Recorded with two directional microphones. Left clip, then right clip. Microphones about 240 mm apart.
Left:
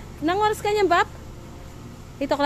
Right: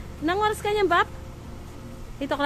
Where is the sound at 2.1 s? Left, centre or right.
Centre.